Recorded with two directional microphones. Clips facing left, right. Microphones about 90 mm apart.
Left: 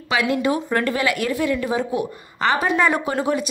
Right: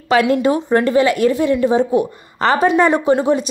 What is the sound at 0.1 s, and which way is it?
Speech, 40° right (ahead or behind).